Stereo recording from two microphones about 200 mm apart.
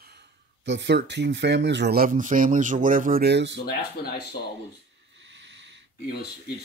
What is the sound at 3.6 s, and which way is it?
Speech, 50° left (ahead or behind).